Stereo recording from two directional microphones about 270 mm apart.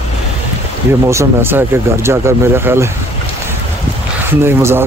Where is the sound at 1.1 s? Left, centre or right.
Centre.